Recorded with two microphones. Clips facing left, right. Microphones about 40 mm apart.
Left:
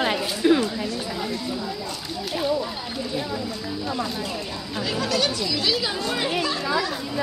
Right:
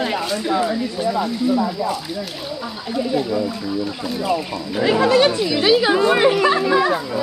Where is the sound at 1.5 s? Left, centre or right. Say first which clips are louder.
Right 10 dB; right.